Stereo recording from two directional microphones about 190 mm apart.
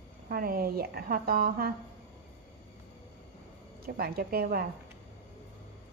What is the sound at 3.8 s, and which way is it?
Speech, 55° right (ahead or behind).